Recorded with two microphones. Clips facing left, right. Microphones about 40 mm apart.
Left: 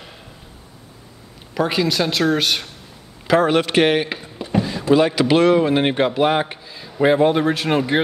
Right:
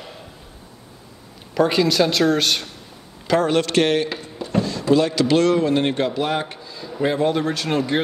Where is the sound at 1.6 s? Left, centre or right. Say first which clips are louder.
Right 2 dB; centre.